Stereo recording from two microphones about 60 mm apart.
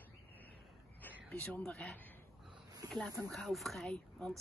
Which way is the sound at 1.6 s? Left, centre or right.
Centre.